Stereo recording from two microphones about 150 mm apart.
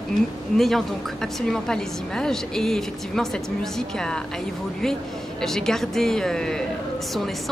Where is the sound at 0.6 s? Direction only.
Centre (ahead or behind).